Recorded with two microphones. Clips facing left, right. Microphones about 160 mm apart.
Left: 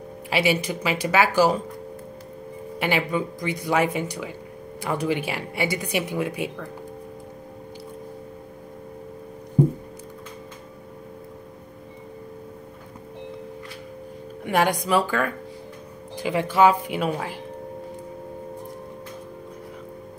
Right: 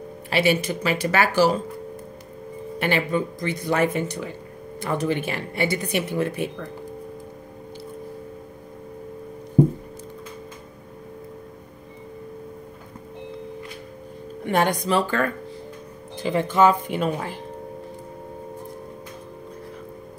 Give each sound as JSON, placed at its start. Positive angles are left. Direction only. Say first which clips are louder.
{"t": 0.3, "sound": "speech", "louder": "right 2 dB", "side_deg": 10}
{"t": 2.8, "sound": "speech", "louder": "right 1 dB", "side_deg": 10}
{"t": 14.4, "sound": "speech", "louder": "even", "side_deg": 10}